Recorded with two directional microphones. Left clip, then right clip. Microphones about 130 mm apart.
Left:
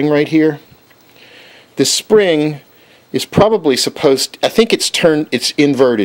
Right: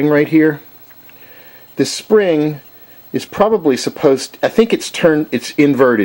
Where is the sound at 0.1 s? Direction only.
35° left (ahead or behind).